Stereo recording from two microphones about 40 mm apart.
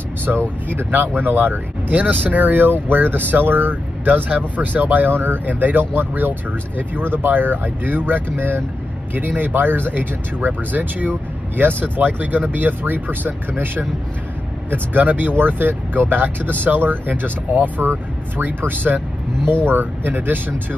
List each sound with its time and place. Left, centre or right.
0.3 s speech: right
0.7 s speech: right
4.1 s speech: right
14.7 s speech: right